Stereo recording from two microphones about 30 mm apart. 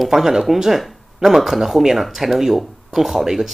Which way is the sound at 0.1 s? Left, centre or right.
Centre.